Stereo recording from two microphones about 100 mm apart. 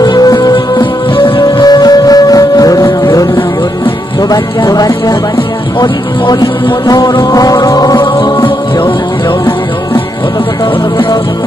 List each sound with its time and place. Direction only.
0.0 s music: 40° left (ahead or behind)
1.1 s music: 55° left (ahead or behind)
1.4 s music: 40° left (ahead or behind)